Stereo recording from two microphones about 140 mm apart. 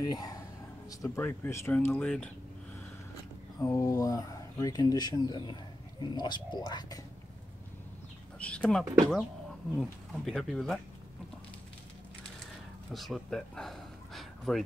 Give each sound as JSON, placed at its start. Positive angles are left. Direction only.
{"t": 0.0, "sound": "speech", "side_deg": 25}
{"t": 3.5, "sound": "speech", "side_deg": 20}
{"t": 8.4, "sound": "speech", "side_deg": 10}
{"t": 12.9, "sound": "speech", "side_deg": 0}